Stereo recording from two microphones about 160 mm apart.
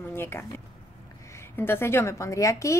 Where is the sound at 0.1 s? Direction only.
15° left (ahead or behind).